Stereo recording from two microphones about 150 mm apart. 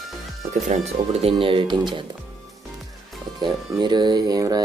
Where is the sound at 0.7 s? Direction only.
45° right (ahead or behind).